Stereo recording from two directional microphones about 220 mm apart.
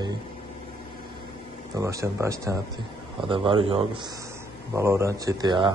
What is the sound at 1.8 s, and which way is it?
A man's voice, 15° right (ahead or behind).